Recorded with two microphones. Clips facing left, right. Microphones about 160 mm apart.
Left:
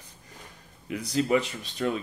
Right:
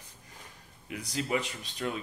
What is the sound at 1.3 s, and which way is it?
Speech, 30° left (ahead or behind).